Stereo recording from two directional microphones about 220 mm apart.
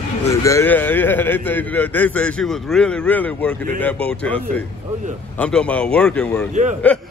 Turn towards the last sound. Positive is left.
turn(degrees=5)  # may be behind; listen again after turning